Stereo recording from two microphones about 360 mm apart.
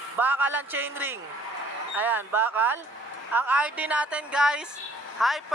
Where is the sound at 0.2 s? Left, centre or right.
Centre.